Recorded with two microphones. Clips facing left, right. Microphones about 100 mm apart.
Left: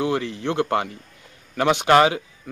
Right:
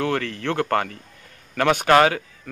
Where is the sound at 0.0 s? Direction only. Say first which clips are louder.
Left 1 dB; 15° left (ahead or behind).